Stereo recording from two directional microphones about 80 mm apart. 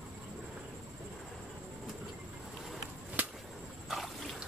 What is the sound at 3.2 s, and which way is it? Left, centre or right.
Whip, right.